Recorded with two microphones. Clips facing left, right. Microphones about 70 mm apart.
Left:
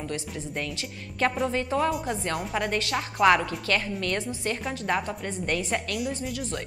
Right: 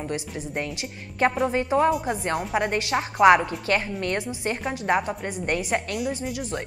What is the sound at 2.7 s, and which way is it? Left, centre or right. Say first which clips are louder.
A woman's voice: right 3 dB; right.